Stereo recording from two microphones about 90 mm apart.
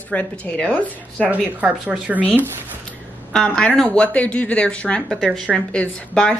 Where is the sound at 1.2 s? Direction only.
15° right (ahead or behind).